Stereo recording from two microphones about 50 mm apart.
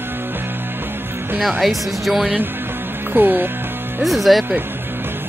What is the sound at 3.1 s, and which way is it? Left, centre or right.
Music, right.